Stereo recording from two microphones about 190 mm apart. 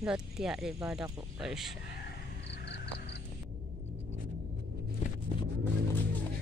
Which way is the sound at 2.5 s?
60° left (ahead or behind).